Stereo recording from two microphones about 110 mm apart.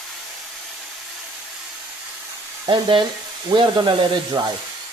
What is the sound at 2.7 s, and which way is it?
Speech, 45° right (ahead or behind).